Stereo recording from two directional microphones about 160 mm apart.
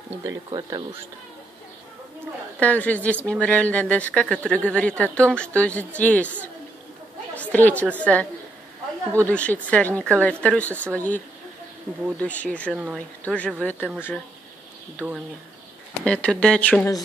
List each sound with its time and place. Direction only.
0.2 s speech: 20° right (ahead or behind)
2.6 s speech: 10° left (ahead or behind)
7.5 s speech: 10° left (ahead or behind)
9.3 s speech: 10° left (ahead or behind)
12.2 s speech: 10° left (ahead or behind)
12.7 s speech: 5° right (ahead or behind)
13.2 s speech: 10° left (ahead or behind)
15.0 s speech: 10° right (ahead or behind)
16.0 s speech: 5° left (ahead or behind)